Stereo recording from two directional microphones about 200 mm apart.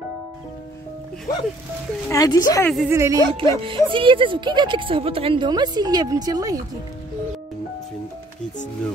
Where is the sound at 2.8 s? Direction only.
15° right (ahead or behind).